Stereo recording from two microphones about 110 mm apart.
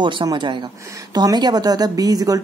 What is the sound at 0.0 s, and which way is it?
Speech, 45° right (ahead or behind).